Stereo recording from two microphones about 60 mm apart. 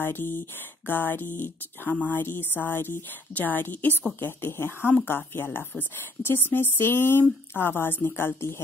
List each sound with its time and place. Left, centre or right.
0.0 s a woman's voice: left